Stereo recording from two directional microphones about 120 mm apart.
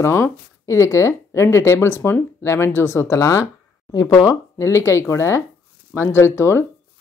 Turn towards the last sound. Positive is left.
turn(degrees=20)  # may be behind; listen again after turning